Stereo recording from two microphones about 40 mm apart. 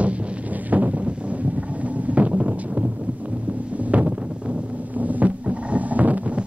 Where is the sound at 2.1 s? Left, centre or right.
Right.